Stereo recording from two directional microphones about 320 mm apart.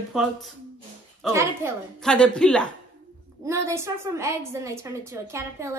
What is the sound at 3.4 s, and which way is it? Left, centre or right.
A woman's voice, centre.